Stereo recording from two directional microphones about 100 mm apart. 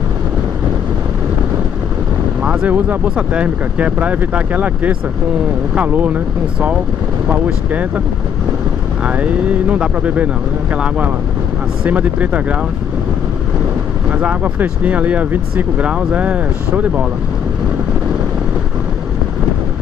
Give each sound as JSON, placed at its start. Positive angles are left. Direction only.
{"t": 2.4, "sound": "speech", "side_deg": -10}
{"t": 9.0, "sound": "speech", "side_deg": -15}
{"t": 14.1, "sound": "speech", "side_deg": -15}